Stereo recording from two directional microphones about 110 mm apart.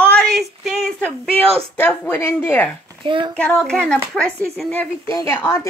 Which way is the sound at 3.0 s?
50° right (ahead or behind).